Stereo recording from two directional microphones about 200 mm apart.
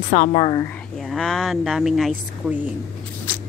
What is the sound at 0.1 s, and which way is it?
Speech, 35° left (ahead or behind).